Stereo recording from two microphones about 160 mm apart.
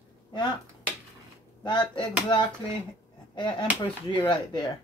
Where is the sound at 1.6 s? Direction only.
30° left (ahead or behind).